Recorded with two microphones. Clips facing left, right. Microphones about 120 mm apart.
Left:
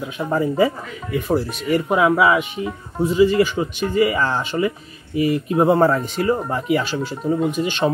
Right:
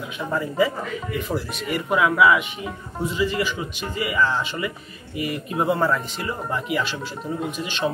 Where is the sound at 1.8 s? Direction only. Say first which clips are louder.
Left 1 dB; 30° left (ahead or behind).